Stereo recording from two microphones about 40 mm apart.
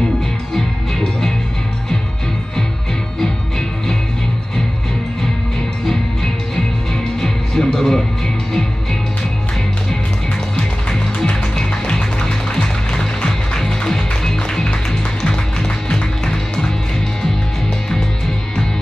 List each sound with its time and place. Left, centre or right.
0.6 s music: centre
3.2 s music: centre
5.9 s music: centre
10.9 s music: centre